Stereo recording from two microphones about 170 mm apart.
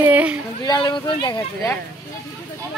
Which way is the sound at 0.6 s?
20° left (ahead or behind).